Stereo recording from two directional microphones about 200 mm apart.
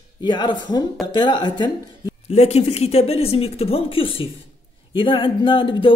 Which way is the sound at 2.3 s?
30° left (ahead or behind).